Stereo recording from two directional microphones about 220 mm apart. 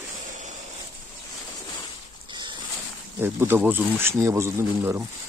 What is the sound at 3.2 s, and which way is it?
Speech, 10° right (ahead or behind).